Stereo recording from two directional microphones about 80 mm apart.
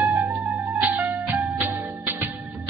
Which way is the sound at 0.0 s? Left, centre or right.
Right.